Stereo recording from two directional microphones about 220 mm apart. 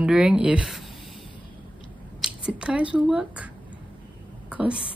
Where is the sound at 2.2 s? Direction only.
5° right (ahead or behind).